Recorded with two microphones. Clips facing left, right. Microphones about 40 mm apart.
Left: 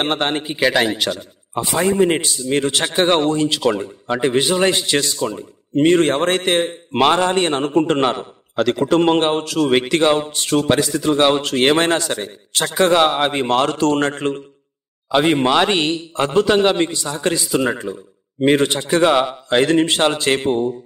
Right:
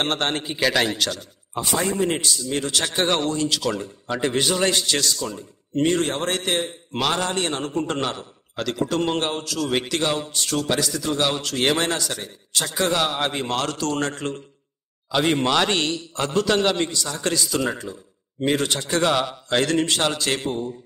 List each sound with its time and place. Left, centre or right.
0.0 s a man's voice: centre